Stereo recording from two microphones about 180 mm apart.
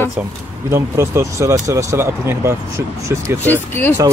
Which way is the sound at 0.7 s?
15° right (ahead or behind).